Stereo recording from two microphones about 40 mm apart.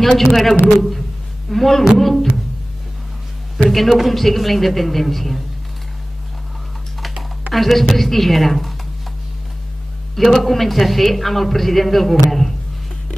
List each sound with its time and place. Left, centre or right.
0.0 s a man's voice: centre
3.7 s a man's voice: centre
7.5 s a man's voice: centre
10.1 s a man's voice: centre